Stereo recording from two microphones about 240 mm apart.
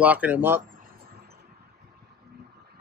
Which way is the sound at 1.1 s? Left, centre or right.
Right.